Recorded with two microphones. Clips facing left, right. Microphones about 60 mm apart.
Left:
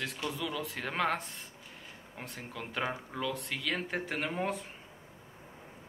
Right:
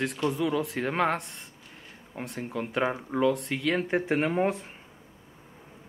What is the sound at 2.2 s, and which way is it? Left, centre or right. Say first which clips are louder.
A man's voice: right 9 dB; centre.